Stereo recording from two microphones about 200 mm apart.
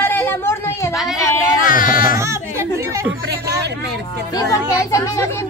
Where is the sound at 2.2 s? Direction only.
15° right (ahead or behind).